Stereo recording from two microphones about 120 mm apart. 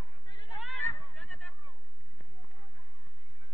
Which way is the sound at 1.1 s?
10° left (ahead or behind).